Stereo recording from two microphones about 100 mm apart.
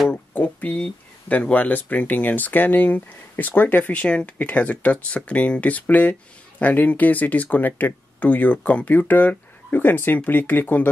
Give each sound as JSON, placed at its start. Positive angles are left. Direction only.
{"t": 0.1, "sound": "speech", "side_deg": 15}